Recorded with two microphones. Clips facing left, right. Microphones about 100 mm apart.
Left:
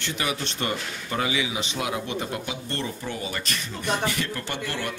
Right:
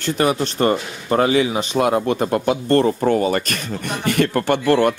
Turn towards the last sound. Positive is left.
turn(degrees=-55)  # may be behind; listen again after turning